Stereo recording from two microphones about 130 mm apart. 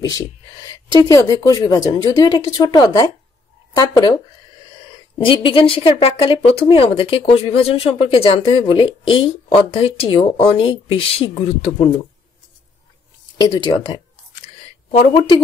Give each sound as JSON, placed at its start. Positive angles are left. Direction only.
{"t": 0.1, "sound": "speech", "side_deg": 30}
{"t": 5.2, "sound": "a woman's voice", "side_deg": 40}
{"t": 13.4, "sound": "speech", "side_deg": 35}